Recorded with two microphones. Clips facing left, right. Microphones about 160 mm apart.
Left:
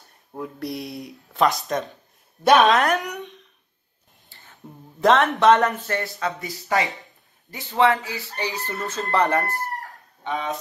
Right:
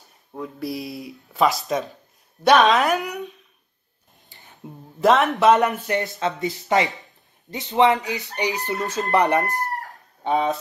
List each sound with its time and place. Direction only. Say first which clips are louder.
0.3 s speech: right 1 dB; centre (ahead or behind)
4.3 s a sound: right 1 dB; 15° right (ahead or behind)
5.0 s speech: even; centre (ahead or behind); by 9.7 s 15° right (ahead or behind)
10.2 s speech: right 7 dB; 35° right (ahead or behind)